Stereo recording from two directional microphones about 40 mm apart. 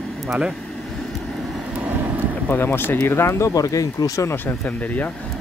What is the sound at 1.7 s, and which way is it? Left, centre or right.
Vehicle, right.